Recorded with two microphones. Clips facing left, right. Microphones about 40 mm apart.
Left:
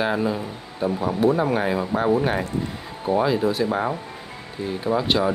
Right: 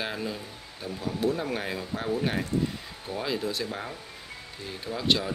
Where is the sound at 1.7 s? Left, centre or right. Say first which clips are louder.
Left 10 dB; left.